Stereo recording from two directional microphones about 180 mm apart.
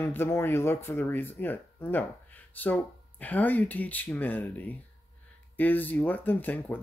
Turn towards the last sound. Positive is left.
turn(degrees=10)  # may be behind; listen again after turning